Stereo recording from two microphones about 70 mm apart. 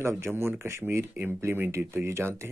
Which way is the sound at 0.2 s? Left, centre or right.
Right.